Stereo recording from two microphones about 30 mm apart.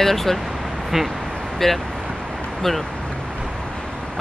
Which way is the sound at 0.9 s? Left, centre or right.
Centre.